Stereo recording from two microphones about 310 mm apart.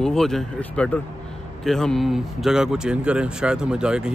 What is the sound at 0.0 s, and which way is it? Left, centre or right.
Speech, centre.